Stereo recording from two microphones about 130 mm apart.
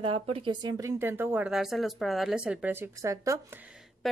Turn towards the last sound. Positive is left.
turn(degrees=0)  # may be behind; listen again after turning